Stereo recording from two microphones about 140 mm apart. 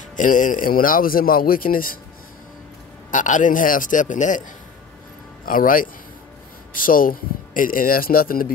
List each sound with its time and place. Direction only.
0.1 s speech: 70° left (ahead or behind); by 2.0 s 90° left
3.1 s a man's voice: 65° left (ahead or behind)
5.4 s speech: 85° left